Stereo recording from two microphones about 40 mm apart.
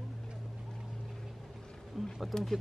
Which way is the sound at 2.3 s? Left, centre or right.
Centre.